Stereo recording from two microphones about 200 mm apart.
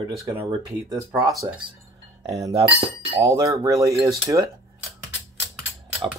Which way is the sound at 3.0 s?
15° right (ahead or behind).